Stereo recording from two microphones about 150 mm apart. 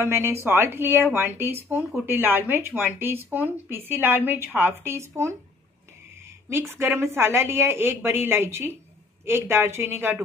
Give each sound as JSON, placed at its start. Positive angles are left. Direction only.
{"t": 0.0, "sound": "a woman's voice", "side_deg": -15}
{"t": 6.7, "sound": "a woman's voice", "side_deg": -15}